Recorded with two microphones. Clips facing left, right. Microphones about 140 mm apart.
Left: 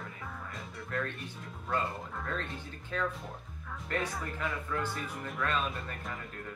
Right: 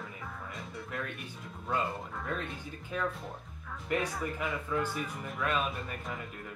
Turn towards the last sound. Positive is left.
turn(degrees=-5)  # may be behind; listen again after turning